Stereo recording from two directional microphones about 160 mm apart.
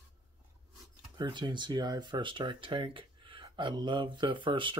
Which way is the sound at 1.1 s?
30° right (ahead or behind).